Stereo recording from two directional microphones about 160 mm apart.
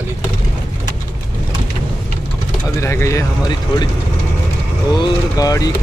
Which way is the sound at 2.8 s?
15° left (ahead or behind).